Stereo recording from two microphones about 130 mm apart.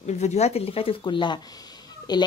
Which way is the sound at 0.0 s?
60° left (ahead or behind).